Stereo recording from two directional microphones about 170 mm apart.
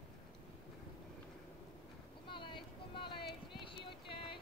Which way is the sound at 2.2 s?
30° left (ahead or behind).